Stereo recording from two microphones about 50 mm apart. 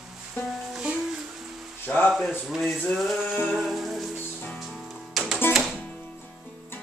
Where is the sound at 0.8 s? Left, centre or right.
Centre.